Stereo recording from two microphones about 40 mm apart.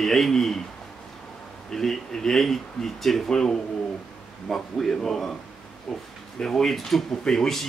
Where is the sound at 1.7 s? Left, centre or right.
Centre.